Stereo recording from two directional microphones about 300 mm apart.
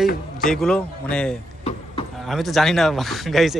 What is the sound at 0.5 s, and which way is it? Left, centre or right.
Speech, centre.